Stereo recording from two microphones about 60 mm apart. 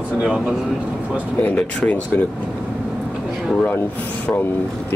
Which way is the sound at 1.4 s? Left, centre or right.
Left.